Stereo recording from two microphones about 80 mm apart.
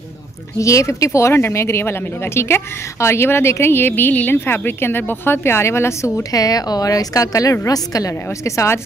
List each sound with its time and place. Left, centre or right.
0.6 s speech: left